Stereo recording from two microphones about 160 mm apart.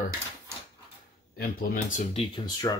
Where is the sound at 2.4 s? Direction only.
25° left (ahead or behind).